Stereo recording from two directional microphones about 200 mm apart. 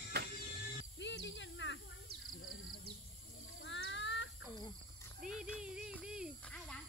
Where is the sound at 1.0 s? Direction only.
65° left (ahead or behind).